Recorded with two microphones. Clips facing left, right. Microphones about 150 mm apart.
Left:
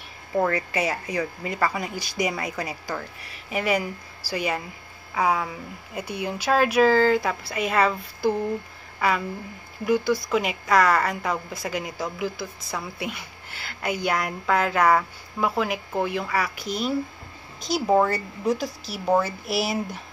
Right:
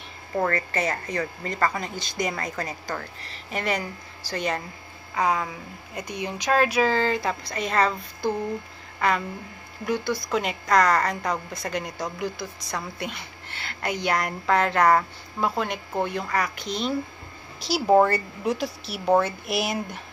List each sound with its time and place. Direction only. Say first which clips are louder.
0.5 s speech: left 1 dB; 10° left (ahead or behind)
9.8 s a woman's voice: left 4 dB; 5° left (ahead or behind)